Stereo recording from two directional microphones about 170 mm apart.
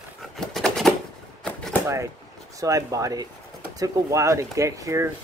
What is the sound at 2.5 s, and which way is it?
Speech, 20° right (ahead or behind).